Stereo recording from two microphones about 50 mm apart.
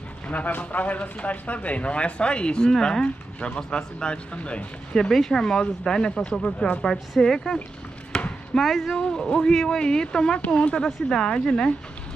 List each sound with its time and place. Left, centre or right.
0.3 s speech: left
5.1 s speech: centre
8.1 s chop: centre
8.5 s speech: centre
8.9 s speech: centre